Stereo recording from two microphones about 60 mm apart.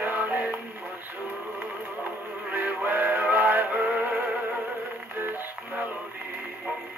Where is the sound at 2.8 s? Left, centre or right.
Right.